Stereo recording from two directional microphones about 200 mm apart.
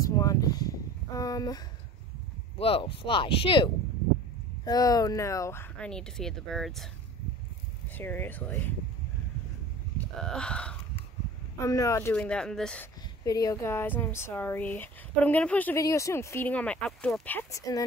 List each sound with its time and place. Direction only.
0.0 s a sound: 15° left (ahead or behind)
2.6 s speech: 25° left (ahead or behind); by 6.9 s centre (ahead or behind)
8.0 s speech: 10° left (ahead or behind)
10.2 s speech: 5° left (ahead or behind)
11.5 s speech: 15° left (ahead or behind)
13.2 s speech: 15° left (ahead or behind)